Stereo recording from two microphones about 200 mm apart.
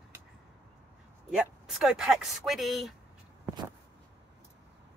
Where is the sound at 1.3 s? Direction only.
5° right (ahead or behind).